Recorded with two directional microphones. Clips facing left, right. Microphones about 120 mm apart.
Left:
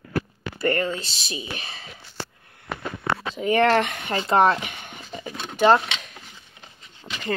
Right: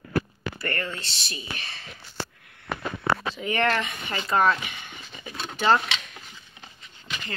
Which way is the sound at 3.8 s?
70° left (ahead or behind).